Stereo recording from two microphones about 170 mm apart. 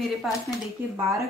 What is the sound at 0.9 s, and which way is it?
Speech, 15° right (ahead or behind).